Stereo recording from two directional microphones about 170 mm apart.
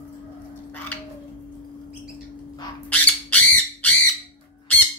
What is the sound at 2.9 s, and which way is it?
Squawk, 10° left (ahead or behind).